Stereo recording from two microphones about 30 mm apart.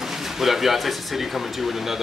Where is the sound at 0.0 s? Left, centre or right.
Centre.